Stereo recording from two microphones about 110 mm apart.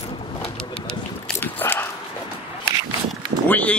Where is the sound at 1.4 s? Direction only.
20° left (ahead or behind).